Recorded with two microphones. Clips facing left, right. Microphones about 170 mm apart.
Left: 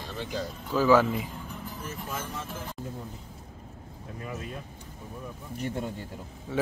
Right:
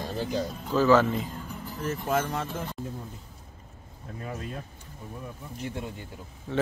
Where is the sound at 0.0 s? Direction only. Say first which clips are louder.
Right 5 dB; 35° right (ahead or behind).